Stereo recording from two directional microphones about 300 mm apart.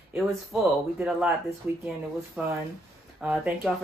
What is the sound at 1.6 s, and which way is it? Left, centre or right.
Speech, centre.